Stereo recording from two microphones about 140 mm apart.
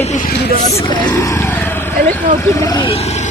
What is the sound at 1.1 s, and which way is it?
Speech, 20° left (ahead or behind).